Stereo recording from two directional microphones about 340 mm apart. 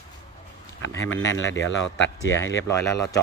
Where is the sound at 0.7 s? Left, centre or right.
Left.